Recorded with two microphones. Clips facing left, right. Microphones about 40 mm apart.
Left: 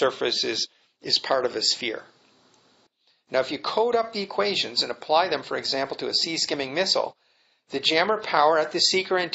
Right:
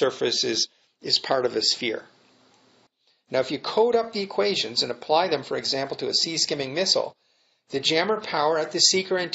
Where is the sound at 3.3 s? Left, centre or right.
Centre; by 7.1 s left.